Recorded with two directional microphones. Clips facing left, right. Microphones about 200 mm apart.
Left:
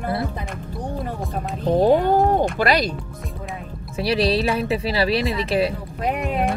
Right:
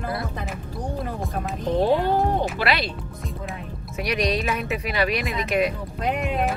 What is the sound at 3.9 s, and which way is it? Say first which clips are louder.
Speech: left 4 dB; 30° left (ahead or behind).